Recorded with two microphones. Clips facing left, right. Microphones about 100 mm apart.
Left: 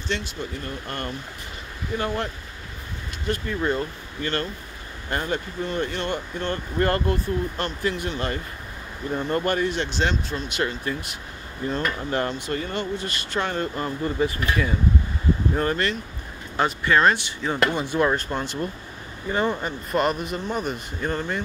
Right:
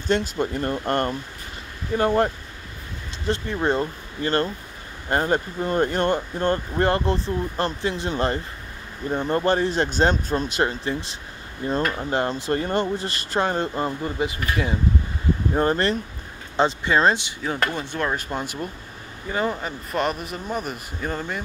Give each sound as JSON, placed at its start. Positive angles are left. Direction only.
{"t": 0.1, "sound": "speech", "side_deg": -50}
{"t": 3.3, "sound": "speech", "side_deg": -25}
{"t": 12.0, "sound": "speech", "side_deg": -20}
{"t": 12.3, "sound": "speech", "side_deg": -35}
{"t": 15.5, "sound": "speech", "side_deg": -30}
{"t": 17.7, "sound": "speech", "side_deg": 10}
{"t": 18.1, "sound": "speech", "side_deg": -10}